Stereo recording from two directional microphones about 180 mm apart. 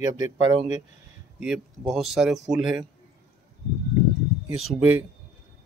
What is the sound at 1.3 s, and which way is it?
Speech, 5° right (ahead or behind).